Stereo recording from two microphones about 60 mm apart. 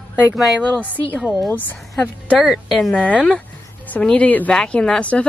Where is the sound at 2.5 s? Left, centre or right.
Centre.